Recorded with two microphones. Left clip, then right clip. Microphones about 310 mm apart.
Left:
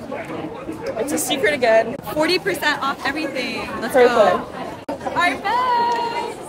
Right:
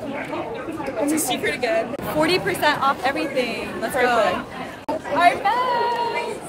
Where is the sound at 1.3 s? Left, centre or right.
Left.